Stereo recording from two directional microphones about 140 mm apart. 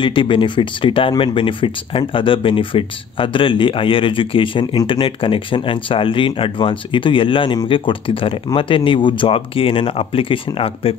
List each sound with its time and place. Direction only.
0.0 s speech: 35° left (ahead or behind)